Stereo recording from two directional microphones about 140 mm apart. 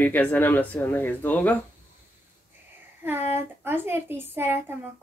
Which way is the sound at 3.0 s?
15° right (ahead or behind).